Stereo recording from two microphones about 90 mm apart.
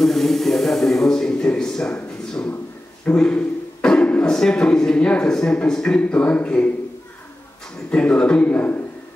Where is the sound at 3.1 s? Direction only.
15° left (ahead or behind).